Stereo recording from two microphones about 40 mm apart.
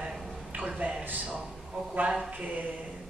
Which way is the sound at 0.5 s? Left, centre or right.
Right.